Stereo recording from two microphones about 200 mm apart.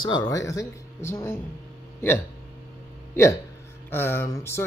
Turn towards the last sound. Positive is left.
turn(degrees=15)  # may be behind; listen again after turning